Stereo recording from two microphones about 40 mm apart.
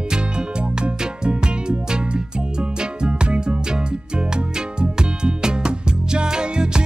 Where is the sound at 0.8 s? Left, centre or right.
Right.